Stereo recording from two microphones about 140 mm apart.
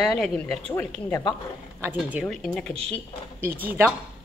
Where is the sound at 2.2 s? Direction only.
5° left (ahead or behind).